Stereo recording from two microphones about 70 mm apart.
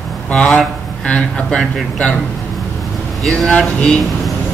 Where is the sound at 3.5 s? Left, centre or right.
Centre.